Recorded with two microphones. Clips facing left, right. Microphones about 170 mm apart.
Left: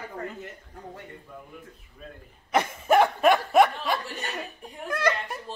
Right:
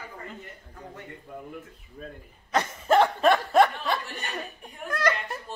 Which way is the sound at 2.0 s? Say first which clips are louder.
Right 4 dB; 40° right (ahead or behind).